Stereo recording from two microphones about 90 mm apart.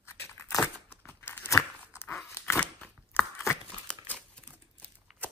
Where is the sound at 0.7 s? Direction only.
20° left (ahead or behind).